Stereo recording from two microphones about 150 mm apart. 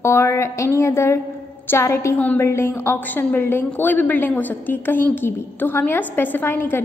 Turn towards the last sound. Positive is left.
turn(degrees=15)  # may be behind; listen again after turning